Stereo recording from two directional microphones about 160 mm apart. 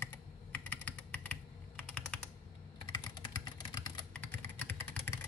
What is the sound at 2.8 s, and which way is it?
Typing, 25° left (ahead or behind).